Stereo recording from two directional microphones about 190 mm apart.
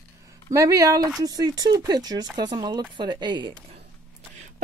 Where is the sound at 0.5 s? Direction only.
15° right (ahead or behind).